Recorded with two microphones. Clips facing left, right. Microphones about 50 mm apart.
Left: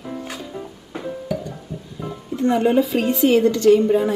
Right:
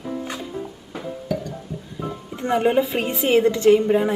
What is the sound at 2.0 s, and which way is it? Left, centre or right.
Speech, right.